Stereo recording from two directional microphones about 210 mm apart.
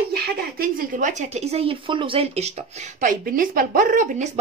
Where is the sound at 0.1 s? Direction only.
45° right (ahead or behind).